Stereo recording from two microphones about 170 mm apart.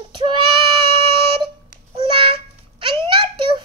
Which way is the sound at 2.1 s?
30° right (ahead or behind).